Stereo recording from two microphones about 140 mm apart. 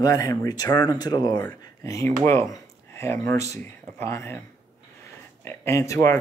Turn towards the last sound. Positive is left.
turn(degrees=20)  # may be behind; listen again after turning